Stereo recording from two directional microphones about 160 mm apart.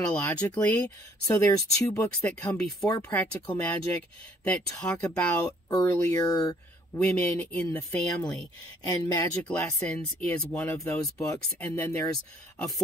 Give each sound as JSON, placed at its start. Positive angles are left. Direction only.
{"t": 0.1, "sound": "speech", "side_deg": 10}
{"t": 6.9, "sound": "speech", "side_deg": 10}
{"t": 9.4, "sound": "speech", "side_deg": 10}